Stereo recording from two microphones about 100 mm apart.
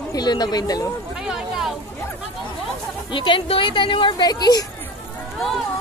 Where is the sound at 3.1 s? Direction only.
55° left (ahead or behind).